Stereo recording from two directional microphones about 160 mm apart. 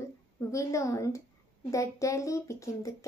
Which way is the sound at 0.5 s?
20° left (ahead or behind).